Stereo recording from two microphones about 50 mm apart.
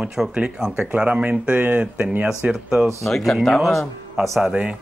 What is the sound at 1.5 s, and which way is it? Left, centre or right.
Speech, right.